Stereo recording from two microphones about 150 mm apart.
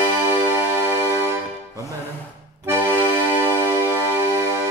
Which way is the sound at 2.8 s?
10° left (ahead or behind).